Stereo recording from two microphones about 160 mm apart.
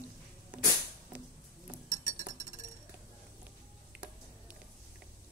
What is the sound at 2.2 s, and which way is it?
Chink, 20° right (ahead or behind).